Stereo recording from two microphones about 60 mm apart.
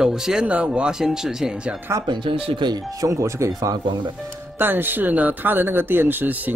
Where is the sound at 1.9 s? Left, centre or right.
Right.